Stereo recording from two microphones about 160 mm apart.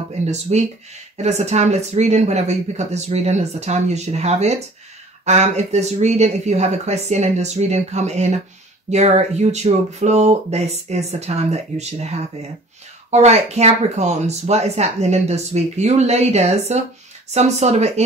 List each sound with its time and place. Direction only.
0.2 s speech: 45° right (ahead or behind)